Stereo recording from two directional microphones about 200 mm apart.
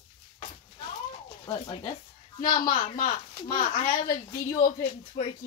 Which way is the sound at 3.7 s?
25° left (ahead or behind).